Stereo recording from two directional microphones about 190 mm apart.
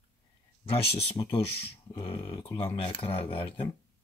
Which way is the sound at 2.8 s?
30° left (ahead or behind).